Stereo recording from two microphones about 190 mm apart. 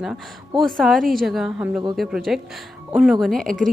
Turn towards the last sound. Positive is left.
turn(degrees=0)  # may be behind; listen again after turning